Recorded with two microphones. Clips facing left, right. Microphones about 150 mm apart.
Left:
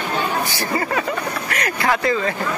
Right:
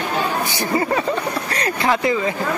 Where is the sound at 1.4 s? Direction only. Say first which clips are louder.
Even; 30° right (ahead or behind).